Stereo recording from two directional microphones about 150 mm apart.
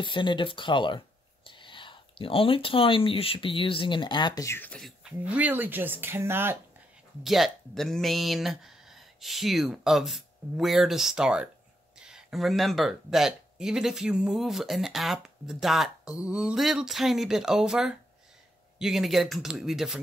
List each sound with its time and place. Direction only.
0.0 s speech: 30° left (ahead or behind)
4.5 s speech: 10° left (ahead or behind); by 6.6 s 15° right (ahead or behind)
7.2 s speech: centre (ahead or behind)